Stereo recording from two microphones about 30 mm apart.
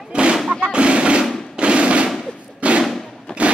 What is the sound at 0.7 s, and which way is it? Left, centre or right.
Artillery fire, right.